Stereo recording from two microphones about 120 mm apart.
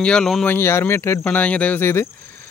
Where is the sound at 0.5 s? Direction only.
20° left (ahead or behind).